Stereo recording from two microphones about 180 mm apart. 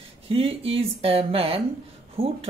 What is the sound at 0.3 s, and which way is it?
Speech, 30° right (ahead or behind).